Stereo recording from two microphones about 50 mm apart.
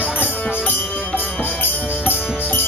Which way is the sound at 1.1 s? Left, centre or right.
Left.